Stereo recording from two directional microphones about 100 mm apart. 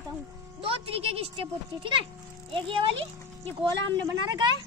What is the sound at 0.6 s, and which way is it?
Speech, 70° right (ahead or behind).